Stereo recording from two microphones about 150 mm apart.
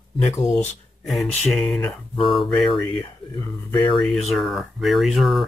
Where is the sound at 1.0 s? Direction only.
Centre (ahead or behind).